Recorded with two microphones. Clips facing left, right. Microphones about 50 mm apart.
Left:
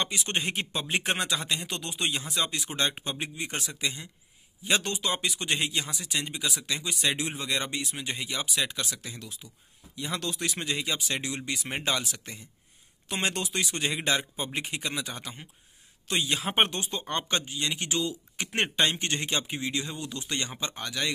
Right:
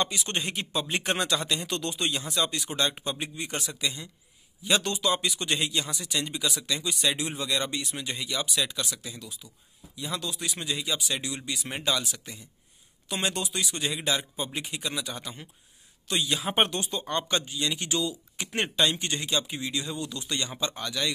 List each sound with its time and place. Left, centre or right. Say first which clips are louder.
0.0 s speech: right 1 dB; left
9.9 s speech: left 1 dB; left